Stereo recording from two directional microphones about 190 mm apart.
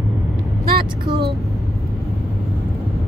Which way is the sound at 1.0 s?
55° right (ahead or behind).